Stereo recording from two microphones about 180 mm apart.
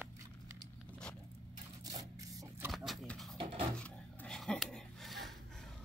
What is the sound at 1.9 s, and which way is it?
Scrape, 20° right (ahead or behind).